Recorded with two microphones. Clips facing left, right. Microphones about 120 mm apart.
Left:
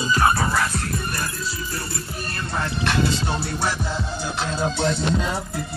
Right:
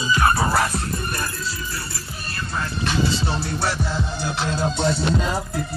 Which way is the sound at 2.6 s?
60° left (ahead or behind).